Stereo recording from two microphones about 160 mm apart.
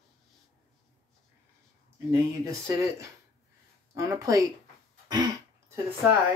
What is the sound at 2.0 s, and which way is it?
Speech, 20° right (ahead or behind).